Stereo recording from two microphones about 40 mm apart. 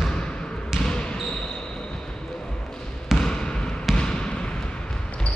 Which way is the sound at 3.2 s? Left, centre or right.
Left.